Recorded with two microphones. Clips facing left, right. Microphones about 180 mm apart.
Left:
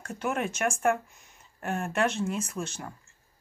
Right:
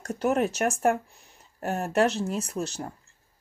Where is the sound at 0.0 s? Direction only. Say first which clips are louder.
Right 6 dB; 40° right (ahead or behind).